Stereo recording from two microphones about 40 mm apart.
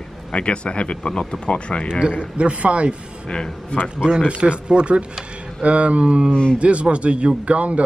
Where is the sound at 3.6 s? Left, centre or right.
Left.